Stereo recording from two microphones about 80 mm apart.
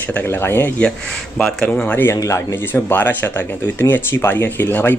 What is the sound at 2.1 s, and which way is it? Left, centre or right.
Speech, left.